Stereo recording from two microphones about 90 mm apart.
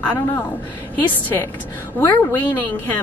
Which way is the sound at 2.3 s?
20° left (ahead or behind).